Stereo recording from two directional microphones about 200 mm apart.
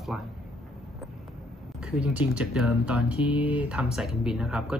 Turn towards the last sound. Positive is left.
turn(degrees=0)  # may be behind; listen again after turning